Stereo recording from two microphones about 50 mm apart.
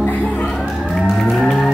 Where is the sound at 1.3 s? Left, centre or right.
Centre.